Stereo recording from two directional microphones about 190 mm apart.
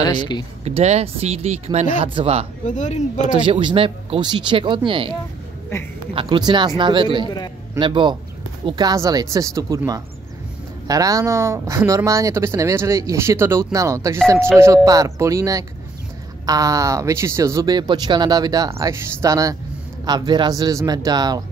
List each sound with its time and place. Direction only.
0.0 s speech: 25° left (ahead or behind)
0.7 s speech: 35° right (ahead or behind)
2.6 s speech: 40° left (ahead or behind)
3.3 s speech: 25° right (ahead or behind)
6.1 s speech: 25° right (ahead or behind)
7.2 s a man's voice: 20° left (ahead or behind)
7.8 s speech: 25° right (ahead or behind)